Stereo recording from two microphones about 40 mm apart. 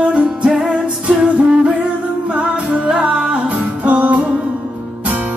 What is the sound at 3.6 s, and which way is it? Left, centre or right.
Music, right.